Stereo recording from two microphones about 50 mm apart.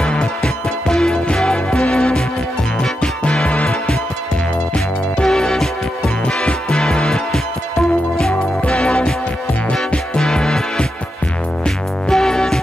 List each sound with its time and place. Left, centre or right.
0.1 s music: centre
8.6 s music: centre